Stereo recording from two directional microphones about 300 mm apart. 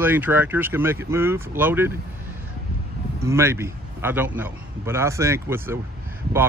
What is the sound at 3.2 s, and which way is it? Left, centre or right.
Speech, centre.